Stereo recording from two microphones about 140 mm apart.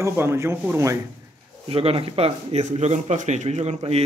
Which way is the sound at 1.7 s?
45° right (ahead or behind).